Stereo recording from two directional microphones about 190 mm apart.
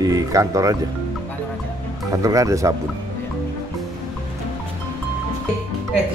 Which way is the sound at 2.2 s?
15° right (ahead or behind).